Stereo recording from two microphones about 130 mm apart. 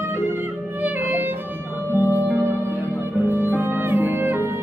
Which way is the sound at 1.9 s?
15° right (ahead or behind).